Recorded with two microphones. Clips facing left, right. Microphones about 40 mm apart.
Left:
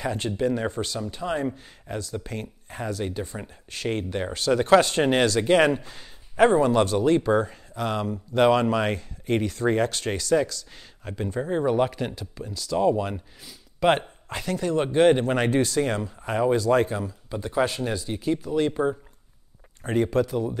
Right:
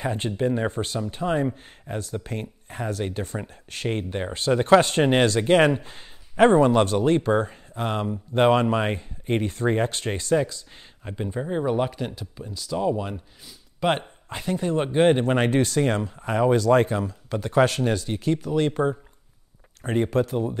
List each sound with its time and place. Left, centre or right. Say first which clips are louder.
0.0 s speech: even; right
3.9 s speech: left 1 dB; right
4.7 s speech: right 2 dB; right; by 11.4 s centre
11.4 s speech: left 2 dB; centre; by 18.9 s right
19.8 s speech: even; right